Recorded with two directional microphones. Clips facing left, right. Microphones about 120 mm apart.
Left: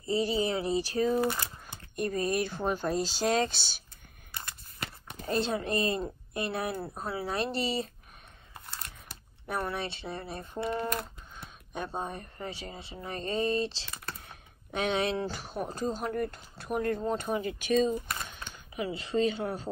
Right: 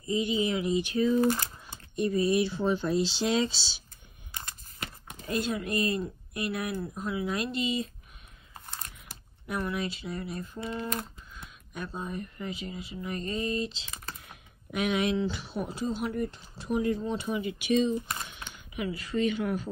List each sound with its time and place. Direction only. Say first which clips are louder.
0.0 s speech: even; 35° left (ahead or behind); by 3.8 s 55° left (ahead or behind)
5.1 s a sound: left 1 dB; 45° left (ahead or behind)
5.4 s speech: even; 30° left (ahead or behind)
9.7 s speech: right 2 dB; 30° left (ahead or behind)
10.5 s speech: left 8 dB; 60° left (ahead or behind)
10.8 s speech: left 1 dB; 45° left (ahead or behind)
11.3 s speech: left 2 dB; 30° left (ahead or behind)
14.2 s a sound: right 1 dB; 30° left (ahead or behind)
15.2 s speech: right 2 dB; 45° left (ahead or behind)
18.9 s speech: even; 25° left (ahead or behind)